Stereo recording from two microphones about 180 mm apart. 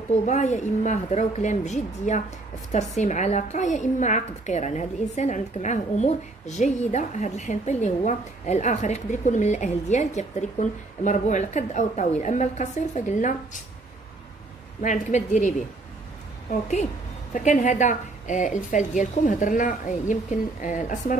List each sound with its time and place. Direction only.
0.3 s a woman's voice: 40° left (ahead or behind)
14.8 s a woman's voice: 45° left (ahead or behind)